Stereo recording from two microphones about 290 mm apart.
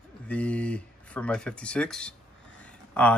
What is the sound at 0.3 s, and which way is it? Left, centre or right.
Speech, centre.